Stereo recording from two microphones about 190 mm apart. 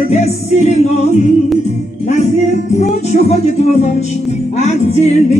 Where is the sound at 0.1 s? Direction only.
35° left (ahead or behind).